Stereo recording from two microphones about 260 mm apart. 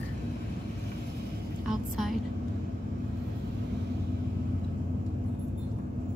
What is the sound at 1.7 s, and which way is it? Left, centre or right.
Speech, centre.